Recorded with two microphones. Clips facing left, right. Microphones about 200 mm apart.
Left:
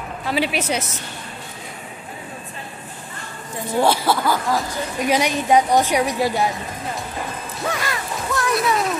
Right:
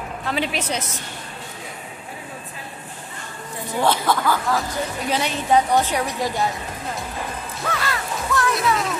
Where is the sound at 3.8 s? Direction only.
10° left (ahead or behind).